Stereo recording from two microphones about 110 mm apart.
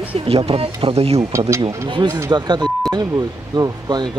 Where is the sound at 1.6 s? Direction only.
40° right (ahead or behind).